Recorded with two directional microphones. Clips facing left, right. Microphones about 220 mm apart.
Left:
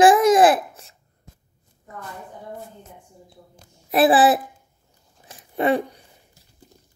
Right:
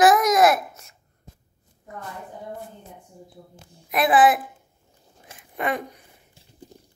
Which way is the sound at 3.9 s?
30° left (ahead or behind).